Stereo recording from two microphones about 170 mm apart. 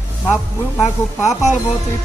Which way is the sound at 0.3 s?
15° left (ahead or behind).